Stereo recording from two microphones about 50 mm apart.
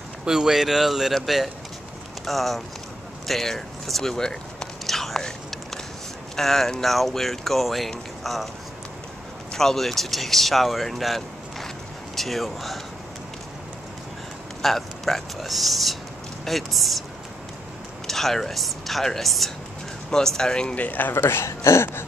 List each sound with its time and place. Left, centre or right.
0.2 s speech: centre
4.2 s biting: centre
6.3 s speech: centre
9.5 s speech: centre
14.6 s speech: centre
18.0 s speech: centre
20.7 s speech: left
21.2 s speech: left
21.5 s speech: left